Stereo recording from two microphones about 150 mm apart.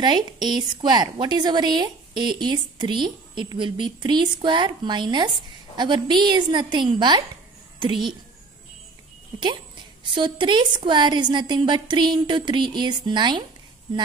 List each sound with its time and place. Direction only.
0.0 s a woman's voice: 30° right (ahead or behind)
9.4 s a woman's voice: 30° right (ahead or behind)